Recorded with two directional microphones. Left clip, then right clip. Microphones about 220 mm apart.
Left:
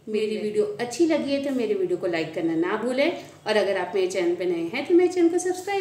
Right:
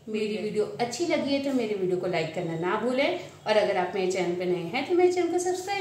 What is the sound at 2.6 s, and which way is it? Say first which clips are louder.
A woman's voice: right 3 dB; 45° left (ahead or behind).